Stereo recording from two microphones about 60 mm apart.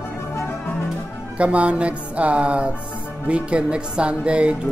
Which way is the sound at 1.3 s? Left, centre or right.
Right.